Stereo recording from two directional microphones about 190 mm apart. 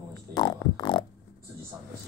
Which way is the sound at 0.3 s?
20° left (ahead or behind).